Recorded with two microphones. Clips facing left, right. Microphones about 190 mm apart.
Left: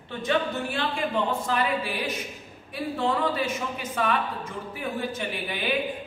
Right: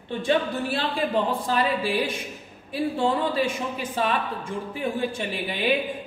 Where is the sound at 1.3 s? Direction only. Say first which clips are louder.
Right 2 dB; 30° right (ahead or behind).